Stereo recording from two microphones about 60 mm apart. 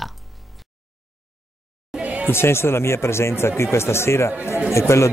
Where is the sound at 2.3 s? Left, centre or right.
Left.